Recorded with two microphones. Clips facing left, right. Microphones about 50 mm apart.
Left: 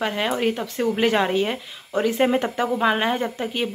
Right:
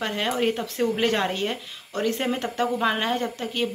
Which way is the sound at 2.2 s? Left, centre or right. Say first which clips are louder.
Left 5 dB; centre.